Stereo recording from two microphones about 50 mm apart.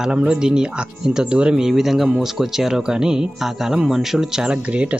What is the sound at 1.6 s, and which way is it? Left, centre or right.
Speech, centre.